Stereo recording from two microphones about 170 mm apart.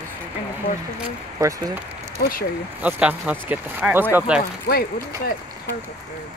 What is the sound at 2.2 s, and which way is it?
Speech, 60° left (ahead or behind).